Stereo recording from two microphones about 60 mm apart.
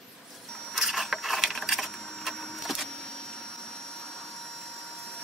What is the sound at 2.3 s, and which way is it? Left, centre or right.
Printer, centre.